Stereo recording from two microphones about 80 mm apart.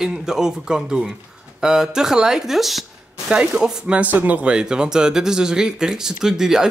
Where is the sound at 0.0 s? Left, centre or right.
Centre.